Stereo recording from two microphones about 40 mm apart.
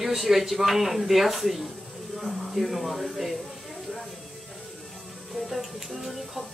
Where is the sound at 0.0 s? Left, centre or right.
Centre.